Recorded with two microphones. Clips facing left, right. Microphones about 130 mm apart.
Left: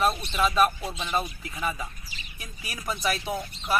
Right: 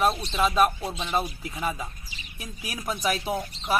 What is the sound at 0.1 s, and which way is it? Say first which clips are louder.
Speech: right 2 dB; 30° right (ahead or behind).